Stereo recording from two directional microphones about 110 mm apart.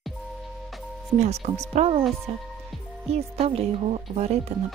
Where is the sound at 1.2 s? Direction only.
80° right.